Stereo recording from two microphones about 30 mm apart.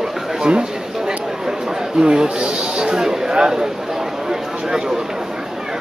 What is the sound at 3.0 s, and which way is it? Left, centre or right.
Speech, centre.